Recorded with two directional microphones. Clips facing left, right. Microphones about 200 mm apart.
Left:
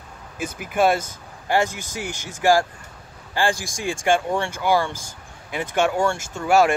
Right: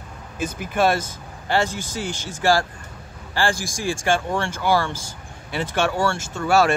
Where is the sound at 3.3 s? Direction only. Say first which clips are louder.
Even; 15° left (ahead or behind).